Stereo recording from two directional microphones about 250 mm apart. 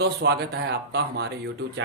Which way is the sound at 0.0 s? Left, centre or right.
Right.